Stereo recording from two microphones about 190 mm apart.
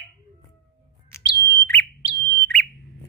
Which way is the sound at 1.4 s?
15° left (ahead or behind).